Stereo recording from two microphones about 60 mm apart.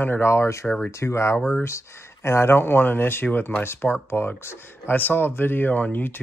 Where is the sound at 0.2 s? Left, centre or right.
Left.